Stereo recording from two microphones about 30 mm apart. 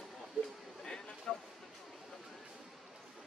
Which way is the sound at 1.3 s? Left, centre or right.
Left.